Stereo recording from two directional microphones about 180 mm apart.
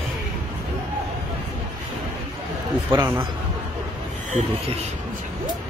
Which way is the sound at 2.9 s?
15° right (ahead or behind).